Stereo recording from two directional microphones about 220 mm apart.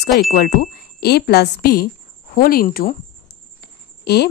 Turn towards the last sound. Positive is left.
turn(degrees=45)  # may be behind; listen again after turning